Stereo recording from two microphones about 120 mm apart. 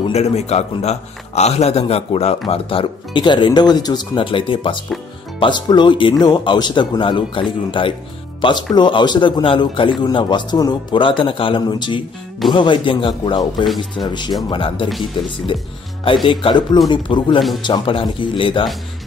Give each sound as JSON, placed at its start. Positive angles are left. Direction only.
{"t": 0.1, "sound": "a man's voice", "side_deg": 60}
{"t": 2.4, "sound": "speech", "side_deg": 50}